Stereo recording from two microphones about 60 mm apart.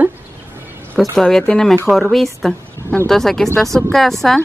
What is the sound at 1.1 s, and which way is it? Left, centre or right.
Speech, centre.